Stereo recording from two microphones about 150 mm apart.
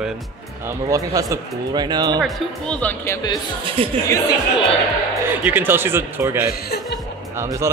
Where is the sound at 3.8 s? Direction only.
35° right (ahead or behind).